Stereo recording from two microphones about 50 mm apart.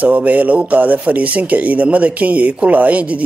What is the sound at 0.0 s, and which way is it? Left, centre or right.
Speech, right.